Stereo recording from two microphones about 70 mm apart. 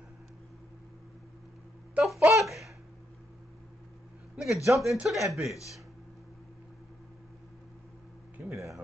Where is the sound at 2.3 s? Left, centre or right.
Centre.